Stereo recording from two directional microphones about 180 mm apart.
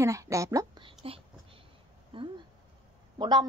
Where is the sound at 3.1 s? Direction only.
25° right (ahead or behind).